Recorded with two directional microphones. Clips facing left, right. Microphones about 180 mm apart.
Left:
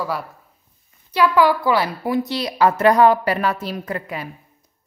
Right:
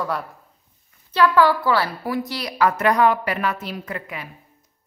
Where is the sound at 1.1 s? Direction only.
10° left (ahead or behind).